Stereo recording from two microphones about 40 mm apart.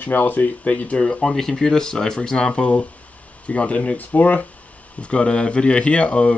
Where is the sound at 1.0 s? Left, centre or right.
Centre.